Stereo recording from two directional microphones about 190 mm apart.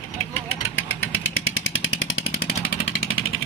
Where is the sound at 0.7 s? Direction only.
90° left.